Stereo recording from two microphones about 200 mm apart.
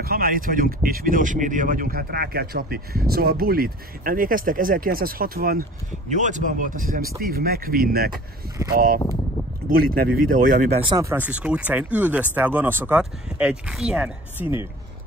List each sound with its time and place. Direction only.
0.0 s speech: 45° right (ahead or behind)
10.8 s speech: 25° right (ahead or behind)
11.1 s speech: 10° right (ahead or behind)